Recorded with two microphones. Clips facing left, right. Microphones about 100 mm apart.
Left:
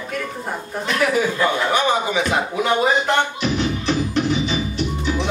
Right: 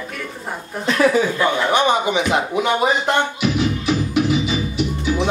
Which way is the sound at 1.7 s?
20° right (ahead or behind).